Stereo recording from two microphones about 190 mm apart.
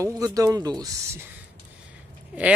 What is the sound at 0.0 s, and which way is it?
Speech, 20° right (ahead or behind).